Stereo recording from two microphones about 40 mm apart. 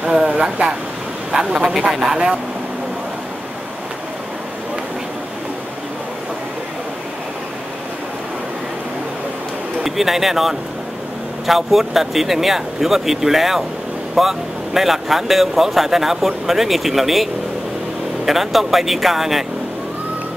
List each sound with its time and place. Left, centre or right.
0.0 s a sound: centre
0.3 s speech: right
9.8 s speech: centre